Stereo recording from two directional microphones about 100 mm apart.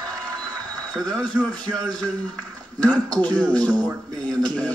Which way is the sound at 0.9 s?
5° left (ahead or behind).